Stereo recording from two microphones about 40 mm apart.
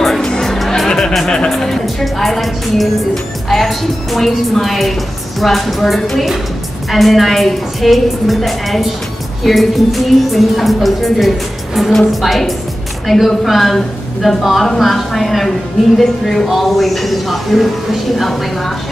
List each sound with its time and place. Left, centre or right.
0.0 s music: centre
0.8 s music: centre
1.1 s speech: centre